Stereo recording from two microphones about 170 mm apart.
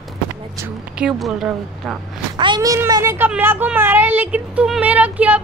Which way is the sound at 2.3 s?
25° right (ahead or behind).